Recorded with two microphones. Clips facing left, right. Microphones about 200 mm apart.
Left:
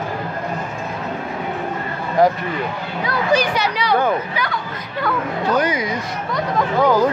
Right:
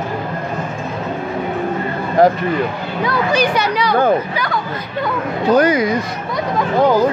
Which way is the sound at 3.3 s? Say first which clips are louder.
Left 1 dB; 55° right (ahead or behind).